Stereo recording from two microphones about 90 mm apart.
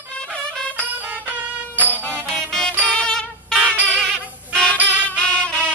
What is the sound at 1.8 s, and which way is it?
Music, 20° left (ahead or behind).